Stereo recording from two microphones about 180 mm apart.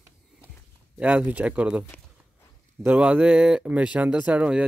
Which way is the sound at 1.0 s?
5° right (ahead or behind).